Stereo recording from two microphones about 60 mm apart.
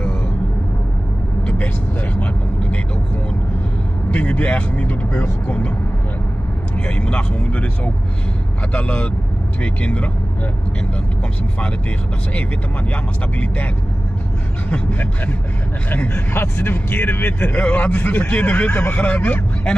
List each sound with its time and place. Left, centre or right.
4.1 s speech: left
7.0 s speech: left
8.7 s speech: centre
14.7 s speech: left
16.3 s speech: left
17.4 s speech: left